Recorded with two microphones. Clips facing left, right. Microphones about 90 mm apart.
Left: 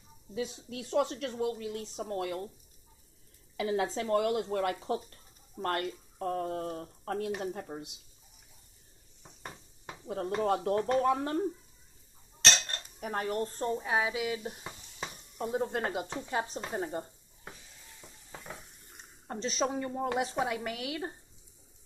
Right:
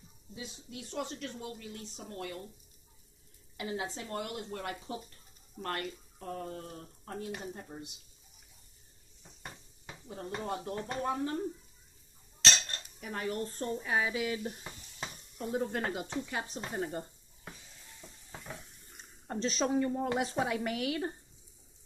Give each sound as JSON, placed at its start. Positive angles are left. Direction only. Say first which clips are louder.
{"t": 0.3, "sound": "speech", "louder": "left 9 dB", "side_deg": 85}
{"t": 3.6, "sound": "speech", "louder": "left 7 dB", "side_deg": 90}
{"t": 5.6, "sound": "speech", "louder": "left 5 dB", "side_deg": 50}
{"t": 10.0, "sound": "speech", "louder": "left 8 dB", "side_deg": 65}
{"t": 13.0, "sound": "speech", "louder": "left 4 dB", "side_deg": 45}
{"t": 13.8, "sound": "stir", "louder": "right 1 dB", "side_deg": 15}
{"t": 15.5, "sound": "speech", "louder": "left 1 dB", "side_deg": 25}
{"t": 19.2, "sound": "speech", "louder": "even", "side_deg": 10}